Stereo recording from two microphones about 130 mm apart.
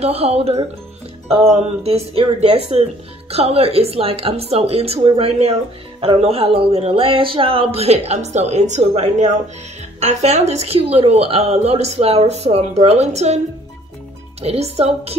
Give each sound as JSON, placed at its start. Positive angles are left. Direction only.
{"t": 0.0, "sound": "speech", "side_deg": -50}
{"t": 14.4, "sound": "speech", "side_deg": -55}